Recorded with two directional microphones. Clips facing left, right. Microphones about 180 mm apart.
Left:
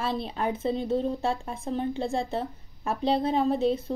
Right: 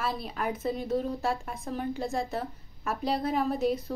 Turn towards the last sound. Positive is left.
turn(degrees=25)  # may be behind; listen again after turning